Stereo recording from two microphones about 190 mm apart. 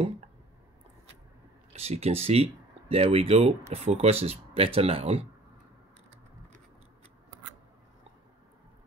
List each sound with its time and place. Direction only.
1.7 s speech: 35° right (ahead or behind)